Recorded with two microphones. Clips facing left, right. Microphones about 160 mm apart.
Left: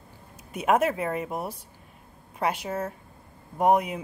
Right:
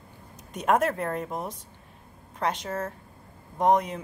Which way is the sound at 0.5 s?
5° left (ahead or behind).